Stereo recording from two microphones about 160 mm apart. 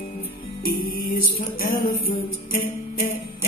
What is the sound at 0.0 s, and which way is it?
Music, 55° left (ahead or behind).